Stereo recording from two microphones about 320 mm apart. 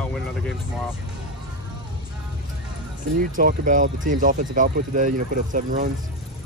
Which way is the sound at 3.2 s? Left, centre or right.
Right.